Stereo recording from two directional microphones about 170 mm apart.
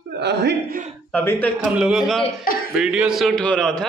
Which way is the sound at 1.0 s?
10° left (ahead or behind).